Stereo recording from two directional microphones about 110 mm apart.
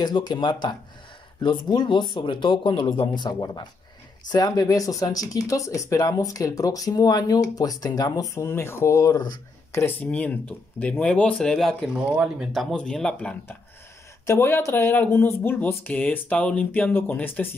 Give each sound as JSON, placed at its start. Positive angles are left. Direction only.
{"t": 0.0, "sound": "speech", "side_deg": 40}
{"t": 9.7, "sound": "speech", "side_deg": 25}
{"t": 10.1, "sound": "speech", "side_deg": 15}
{"t": 12.7, "sound": "speech", "side_deg": 5}
{"t": 14.2, "sound": "speech", "side_deg": 25}